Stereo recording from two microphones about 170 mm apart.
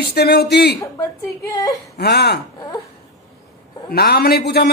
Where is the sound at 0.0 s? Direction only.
70° left (ahead or behind).